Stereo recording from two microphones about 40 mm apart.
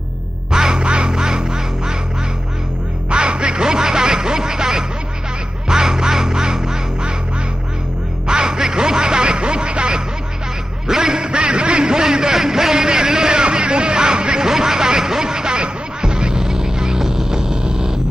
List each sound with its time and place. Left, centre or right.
0.5 s quack: centre
3.1 s music: right
5.7 s quack: centre
8.3 s music: centre
10.9 s a sound: centre